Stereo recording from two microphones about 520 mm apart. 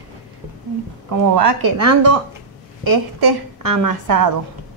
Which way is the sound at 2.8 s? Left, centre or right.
Right.